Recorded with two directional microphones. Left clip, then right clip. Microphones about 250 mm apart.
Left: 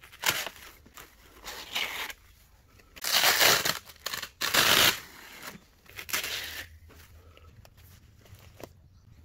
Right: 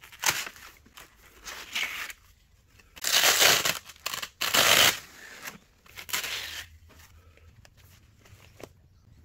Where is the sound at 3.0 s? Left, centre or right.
Centre.